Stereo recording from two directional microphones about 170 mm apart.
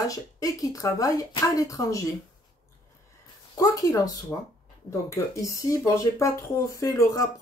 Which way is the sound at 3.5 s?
20° left (ahead or behind).